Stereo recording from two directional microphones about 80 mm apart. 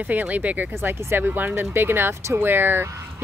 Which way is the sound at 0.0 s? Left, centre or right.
Centre.